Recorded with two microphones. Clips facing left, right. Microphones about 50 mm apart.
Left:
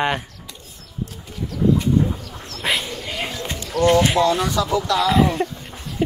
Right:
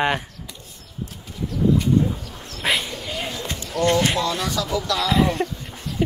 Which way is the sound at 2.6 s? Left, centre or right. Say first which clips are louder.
Even; centre.